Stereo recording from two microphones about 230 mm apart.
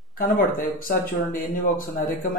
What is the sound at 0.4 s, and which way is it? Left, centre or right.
Speech, left.